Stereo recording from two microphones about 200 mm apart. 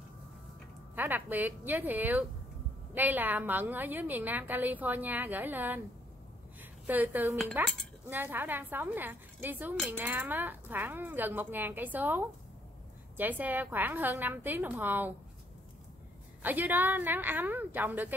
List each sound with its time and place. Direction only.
0.9 s a woman's voice: 10° right (ahead or behind)
6.9 s a woman's voice: 10° right (ahead or behind)
16.4 s a woman's voice: 10° right (ahead or behind)